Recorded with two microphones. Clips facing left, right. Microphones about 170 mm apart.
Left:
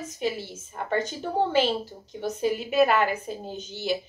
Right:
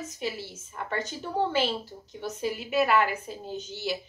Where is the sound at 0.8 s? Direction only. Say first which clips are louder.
Left 3 dB; 35° left (ahead or behind).